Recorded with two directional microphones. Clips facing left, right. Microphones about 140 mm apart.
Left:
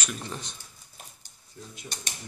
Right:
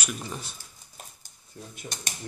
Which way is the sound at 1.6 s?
45° right (ahead or behind).